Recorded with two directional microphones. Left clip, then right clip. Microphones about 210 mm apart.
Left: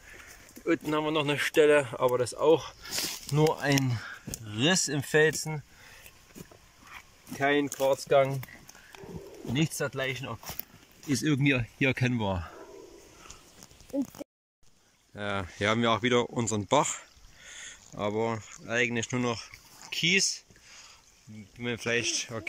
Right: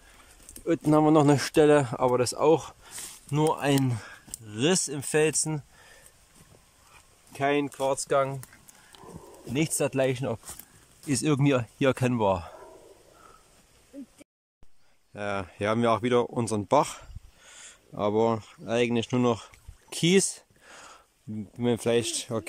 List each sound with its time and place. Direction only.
0.8 s speech: 30° right (ahead or behind); by 5.6 s 10° right (ahead or behind)
7.3 s speech: 5° right (ahead or behind)
9.5 s speech: 10° right (ahead or behind)
13.9 s speech: 20° left (ahead or behind)
15.1 s speech: 5° right (ahead or behind)
19.3 s a sound: 25° right (ahead or behind); by 21.0 s 45° right (ahead or behind)
21.5 s speech: 25° right (ahead or behind)